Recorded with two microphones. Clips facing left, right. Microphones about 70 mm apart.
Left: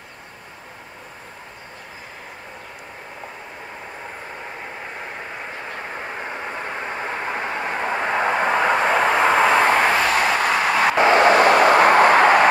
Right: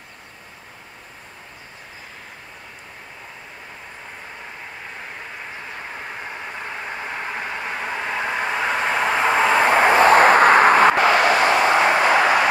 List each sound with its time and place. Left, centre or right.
7.3 s vehicle: left
8.6 s vehicle: centre
9.1 s vehicle: centre
9.7 s vehicle: centre
9.9 s vehicle: right
11.0 s a sound: left